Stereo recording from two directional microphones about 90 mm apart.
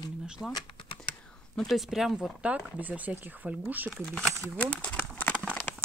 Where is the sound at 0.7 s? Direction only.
65° left (ahead or behind).